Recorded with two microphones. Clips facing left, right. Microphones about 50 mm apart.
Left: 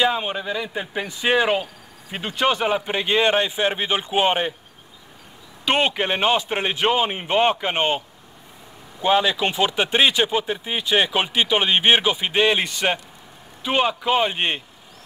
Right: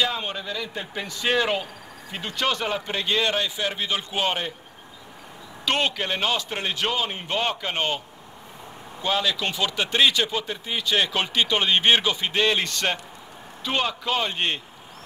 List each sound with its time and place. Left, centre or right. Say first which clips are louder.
0.0 s speech: left 5 dB; left
5.7 s speech: left 4 dB; left
9.0 s speech: left 6 dB; left